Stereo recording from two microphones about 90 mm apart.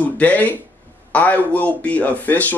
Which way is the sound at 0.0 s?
20° left (ahead or behind).